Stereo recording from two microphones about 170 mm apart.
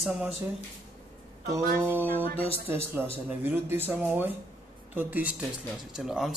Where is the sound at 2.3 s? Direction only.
35° left (ahead or behind).